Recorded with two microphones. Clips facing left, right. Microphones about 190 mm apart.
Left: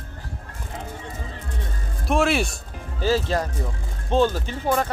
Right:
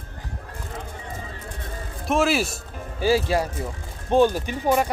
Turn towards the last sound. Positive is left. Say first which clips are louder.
# right 2 dB
turn(degrees=-15)  # may be behind; listen again after turning